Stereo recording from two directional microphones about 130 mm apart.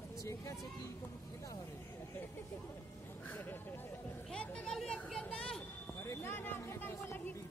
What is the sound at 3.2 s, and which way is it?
Speech, 15° left (ahead or behind).